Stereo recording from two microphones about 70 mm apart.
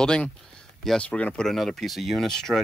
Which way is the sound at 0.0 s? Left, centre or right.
Centre.